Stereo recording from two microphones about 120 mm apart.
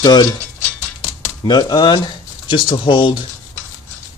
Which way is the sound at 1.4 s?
40° left (ahead or behind).